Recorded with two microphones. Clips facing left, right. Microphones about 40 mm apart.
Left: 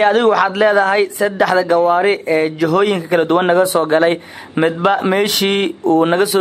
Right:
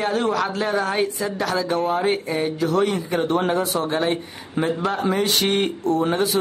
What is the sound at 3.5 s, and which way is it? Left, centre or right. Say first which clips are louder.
Speech: left 9 dB; left.